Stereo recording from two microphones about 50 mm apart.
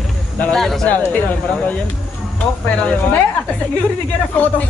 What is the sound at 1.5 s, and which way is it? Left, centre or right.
Speech, left.